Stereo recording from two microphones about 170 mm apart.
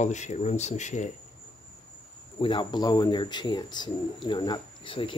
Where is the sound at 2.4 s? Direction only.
30° left (ahead or behind).